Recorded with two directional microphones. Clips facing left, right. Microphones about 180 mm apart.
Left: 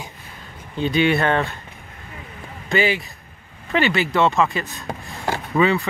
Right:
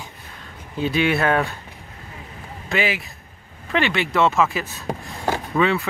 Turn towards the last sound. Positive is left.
turn(degrees=0)  # may be behind; listen again after turning